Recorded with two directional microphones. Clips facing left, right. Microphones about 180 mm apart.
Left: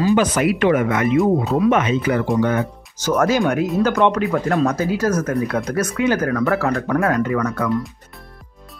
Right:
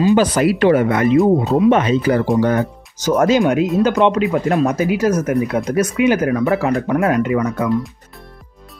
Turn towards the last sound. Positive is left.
turn(degrees=-15)  # may be behind; listen again after turning